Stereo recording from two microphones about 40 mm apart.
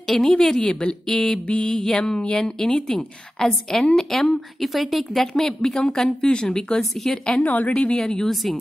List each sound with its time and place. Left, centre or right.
0.0 s a woman's voice: centre
2.6 s speech: centre
5.3 s speech: centre
6.8 s a woman's voice: centre
7.3 s a woman's voice: left
7.9 s speech: centre
8.3 s a woman's voice: centre